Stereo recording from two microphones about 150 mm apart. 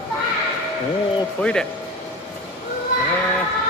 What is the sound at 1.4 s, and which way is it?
Speech, 5° left (ahead or behind).